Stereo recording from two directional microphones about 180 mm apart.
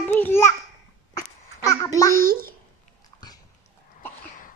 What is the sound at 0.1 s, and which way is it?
Babbling, 10° left (ahead or behind).